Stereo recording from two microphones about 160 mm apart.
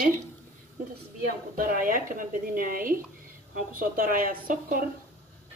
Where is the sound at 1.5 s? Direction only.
60° right (ahead or behind).